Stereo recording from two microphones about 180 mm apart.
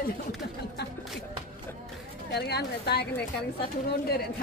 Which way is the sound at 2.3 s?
65° left (ahead or behind).